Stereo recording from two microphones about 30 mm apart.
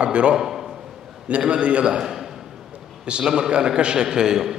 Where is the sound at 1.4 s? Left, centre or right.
Right.